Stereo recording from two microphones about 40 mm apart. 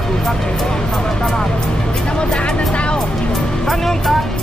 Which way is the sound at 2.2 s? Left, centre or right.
Left.